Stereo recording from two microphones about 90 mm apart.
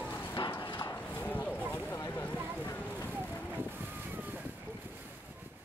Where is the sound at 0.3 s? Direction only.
65° left (ahead or behind).